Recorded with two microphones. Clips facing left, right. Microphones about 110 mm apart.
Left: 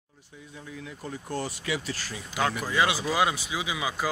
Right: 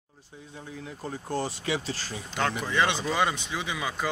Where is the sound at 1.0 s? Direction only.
30° right (ahead or behind).